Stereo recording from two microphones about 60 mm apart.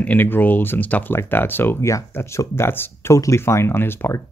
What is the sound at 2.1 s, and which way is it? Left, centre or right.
Speech, left.